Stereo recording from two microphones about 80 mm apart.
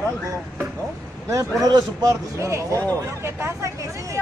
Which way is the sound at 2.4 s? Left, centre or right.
Right.